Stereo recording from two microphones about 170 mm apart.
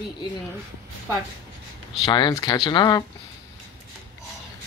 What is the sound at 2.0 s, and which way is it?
Speech, 25° left (ahead or behind).